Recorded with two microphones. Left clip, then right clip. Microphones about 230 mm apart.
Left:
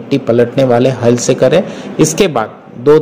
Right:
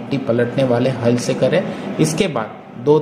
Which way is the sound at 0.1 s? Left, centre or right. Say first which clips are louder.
Left 7 dB; left.